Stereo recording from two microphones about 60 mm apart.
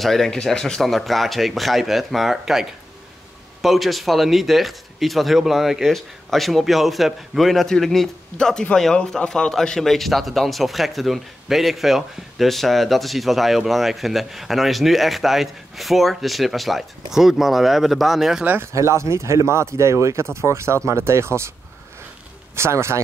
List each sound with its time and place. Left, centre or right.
0.0 s speech: centre
18.6 s speech: right
22.6 s speech: right